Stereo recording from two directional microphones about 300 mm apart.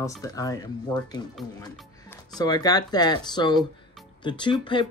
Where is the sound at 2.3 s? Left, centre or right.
Centre.